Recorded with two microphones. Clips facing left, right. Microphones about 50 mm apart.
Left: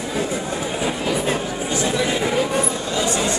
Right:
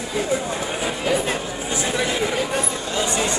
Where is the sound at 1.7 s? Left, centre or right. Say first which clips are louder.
Left 2 dB; centre.